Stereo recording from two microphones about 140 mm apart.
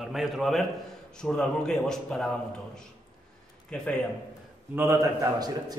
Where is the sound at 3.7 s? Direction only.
5° left (ahead or behind).